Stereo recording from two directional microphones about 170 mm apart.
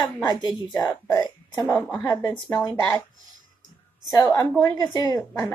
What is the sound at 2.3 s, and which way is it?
Speech, 25° left (ahead or behind).